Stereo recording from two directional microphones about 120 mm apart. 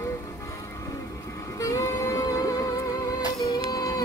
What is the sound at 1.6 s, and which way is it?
Music, 25° left (ahead or behind).